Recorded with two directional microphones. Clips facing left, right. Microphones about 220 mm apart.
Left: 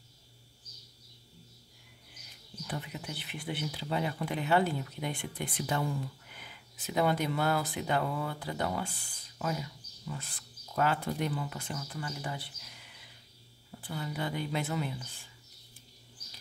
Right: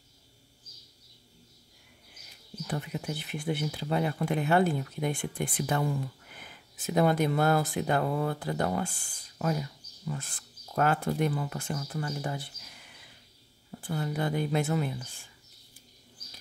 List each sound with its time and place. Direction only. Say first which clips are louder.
2.6 s speech: right 5 dB; 45° right (ahead or behind)
13.7 s speech: right 5 dB; 45° right (ahead or behind)